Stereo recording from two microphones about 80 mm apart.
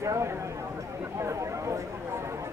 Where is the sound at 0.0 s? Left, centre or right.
Right.